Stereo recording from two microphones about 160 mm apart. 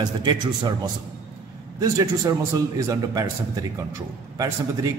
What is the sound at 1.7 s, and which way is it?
A man's voice, 20° right (ahead or behind).